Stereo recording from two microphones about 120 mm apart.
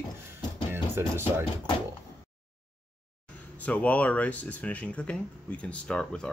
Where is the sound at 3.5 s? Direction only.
10° left (ahead or behind).